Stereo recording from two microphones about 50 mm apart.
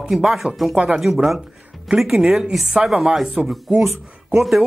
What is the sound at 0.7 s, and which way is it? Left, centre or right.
Speech, right.